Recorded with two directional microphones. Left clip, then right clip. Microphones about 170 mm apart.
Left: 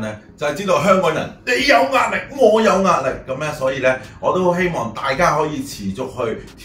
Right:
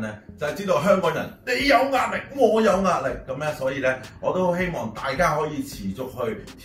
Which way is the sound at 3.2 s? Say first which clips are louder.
Left 5 dB; 10° left (ahead or behind).